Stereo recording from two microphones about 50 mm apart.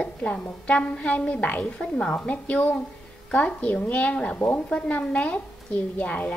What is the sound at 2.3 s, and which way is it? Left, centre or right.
A woman's voice, left.